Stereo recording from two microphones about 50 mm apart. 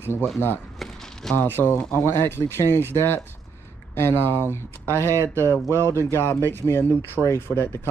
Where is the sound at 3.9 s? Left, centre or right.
Left.